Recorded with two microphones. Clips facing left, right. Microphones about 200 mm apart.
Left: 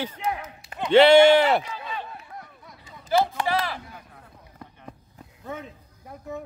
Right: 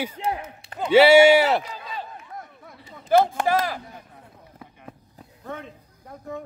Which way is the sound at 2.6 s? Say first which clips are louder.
Right 8 dB; 55° right (ahead or behind).